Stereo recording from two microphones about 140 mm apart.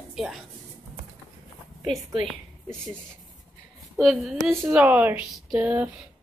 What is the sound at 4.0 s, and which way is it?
Speech, centre (ahead or behind).